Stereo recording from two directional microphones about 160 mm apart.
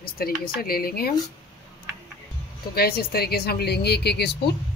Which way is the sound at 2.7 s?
75° left (ahead or behind).